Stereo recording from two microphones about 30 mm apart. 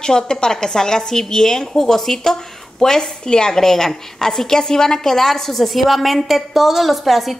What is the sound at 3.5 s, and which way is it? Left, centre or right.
A woman's voice, centre.